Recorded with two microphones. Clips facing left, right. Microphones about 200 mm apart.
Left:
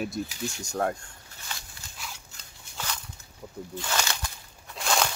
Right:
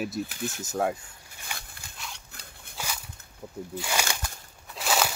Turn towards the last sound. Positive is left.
turn(degrees=-5)  # may be behind; listen again after turning